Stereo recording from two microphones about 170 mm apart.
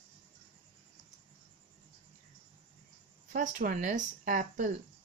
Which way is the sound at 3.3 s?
50° right (ahead or behind).